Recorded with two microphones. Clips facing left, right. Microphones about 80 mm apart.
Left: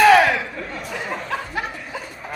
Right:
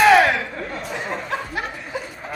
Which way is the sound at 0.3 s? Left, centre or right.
Right.